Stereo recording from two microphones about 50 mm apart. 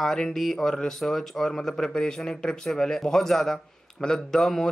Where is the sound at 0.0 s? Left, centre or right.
Centre.